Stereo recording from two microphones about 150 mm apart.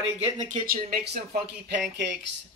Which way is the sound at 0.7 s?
90° right.